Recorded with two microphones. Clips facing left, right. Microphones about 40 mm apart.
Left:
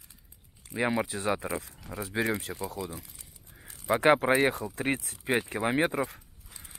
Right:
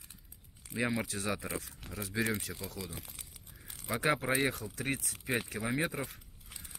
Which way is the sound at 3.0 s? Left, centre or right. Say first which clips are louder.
Left 1 dB; right.